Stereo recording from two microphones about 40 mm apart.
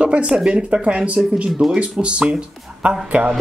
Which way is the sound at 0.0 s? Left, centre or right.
Right.